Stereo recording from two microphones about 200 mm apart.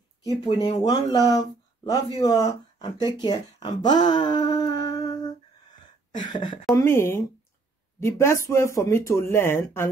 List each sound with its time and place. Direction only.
0.2 s speech: 20° left (ahead or behind)
3.5 s a sound: 20° left (ahead or behind)
6.3 s speech: 20° left (ahead or behind)